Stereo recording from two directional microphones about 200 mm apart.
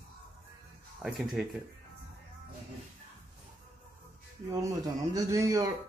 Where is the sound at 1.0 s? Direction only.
5° right (ahead or behind).